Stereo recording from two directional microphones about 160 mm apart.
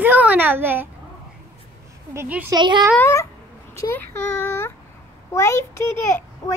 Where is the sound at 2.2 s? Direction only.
10° right (ahead or behind).